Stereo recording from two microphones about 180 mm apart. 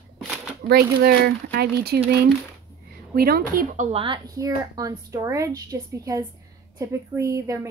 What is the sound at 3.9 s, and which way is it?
A woman's voice, 30° right (ahead or behind).